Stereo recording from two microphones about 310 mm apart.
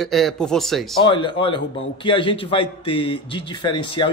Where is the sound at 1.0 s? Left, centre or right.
Centre.